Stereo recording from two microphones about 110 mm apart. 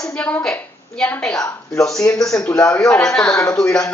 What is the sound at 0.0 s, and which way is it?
A woman's voice, 10° left (ahead or behind).